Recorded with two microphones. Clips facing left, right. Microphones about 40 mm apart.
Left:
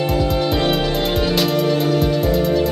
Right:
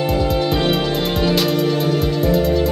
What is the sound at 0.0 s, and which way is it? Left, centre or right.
Music, centre.